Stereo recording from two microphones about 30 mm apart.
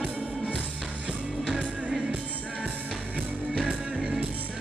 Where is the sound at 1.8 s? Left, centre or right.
Right.